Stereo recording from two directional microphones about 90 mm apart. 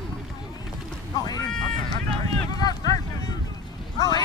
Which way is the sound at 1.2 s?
45° left (ahead or behind).